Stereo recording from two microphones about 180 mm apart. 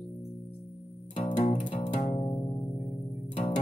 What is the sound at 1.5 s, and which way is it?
Music, 40° left (ahead or behind).